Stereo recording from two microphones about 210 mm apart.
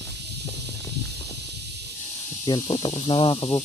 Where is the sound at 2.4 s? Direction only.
20° left (ahead or behind).